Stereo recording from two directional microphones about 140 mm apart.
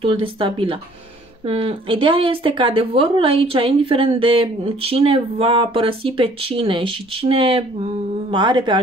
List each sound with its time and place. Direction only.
0.0 s speech: 40° right (ahead or behind)